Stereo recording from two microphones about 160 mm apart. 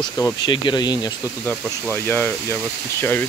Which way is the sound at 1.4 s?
15° left (ahead or behind).